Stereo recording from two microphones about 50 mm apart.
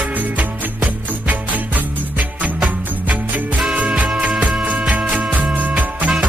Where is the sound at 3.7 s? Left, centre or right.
Right.